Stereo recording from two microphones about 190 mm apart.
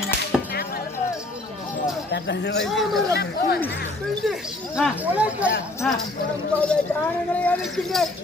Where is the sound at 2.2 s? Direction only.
60° left (ahead or behind).